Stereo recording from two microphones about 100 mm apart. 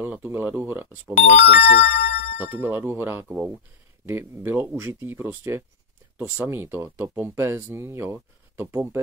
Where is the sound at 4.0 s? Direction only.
25° right (ahead or behind).